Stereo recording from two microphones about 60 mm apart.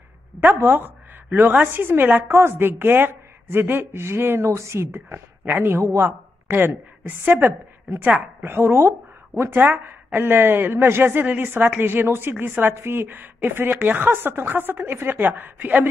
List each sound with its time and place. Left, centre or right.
0.4 s a woman's voice: right
5.4 s speech: right
8.4 s a woman's voice: right